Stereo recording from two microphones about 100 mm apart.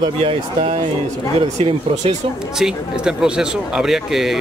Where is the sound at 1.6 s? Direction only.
90° right.